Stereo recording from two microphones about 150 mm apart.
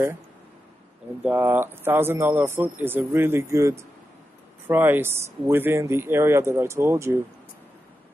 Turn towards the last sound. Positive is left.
turn(degrees=-20)  # may be behind; listen again after turning